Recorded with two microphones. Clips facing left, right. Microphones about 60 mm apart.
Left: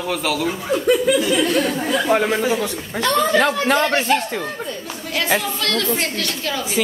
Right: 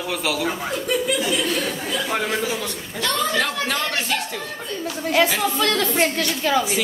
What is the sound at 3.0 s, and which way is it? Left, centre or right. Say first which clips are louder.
Speech: left 6 dB; left.